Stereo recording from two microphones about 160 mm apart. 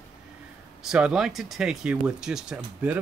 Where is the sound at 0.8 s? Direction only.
5° right (ahead or behind).